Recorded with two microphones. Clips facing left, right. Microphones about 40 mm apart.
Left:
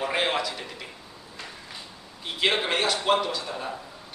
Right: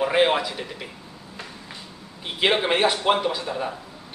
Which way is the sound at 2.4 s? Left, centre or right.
Centre.